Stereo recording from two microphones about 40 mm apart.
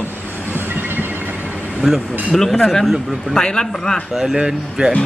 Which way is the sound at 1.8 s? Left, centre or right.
Centre.